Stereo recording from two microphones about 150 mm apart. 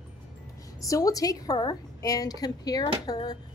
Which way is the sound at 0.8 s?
20° left (ahead or behind).